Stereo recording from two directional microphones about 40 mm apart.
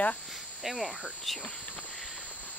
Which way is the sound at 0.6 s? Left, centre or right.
Centre.